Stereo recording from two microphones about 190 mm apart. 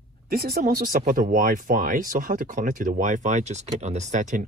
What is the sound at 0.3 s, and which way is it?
Speech, 50° right (ahead or behind).